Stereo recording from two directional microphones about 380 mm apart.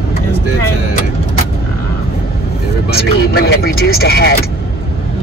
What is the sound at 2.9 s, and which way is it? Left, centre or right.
Speech, left.